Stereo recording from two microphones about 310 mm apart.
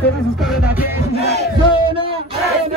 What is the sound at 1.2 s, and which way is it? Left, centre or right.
Battle cry, right.